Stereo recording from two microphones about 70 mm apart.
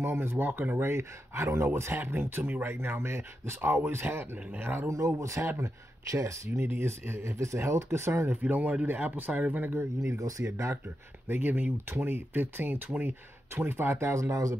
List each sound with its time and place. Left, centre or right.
0.0 s speech: right
4.9 s speech: right
8.3 s speech: right
10.1 s speech: right
11.2 s speech: right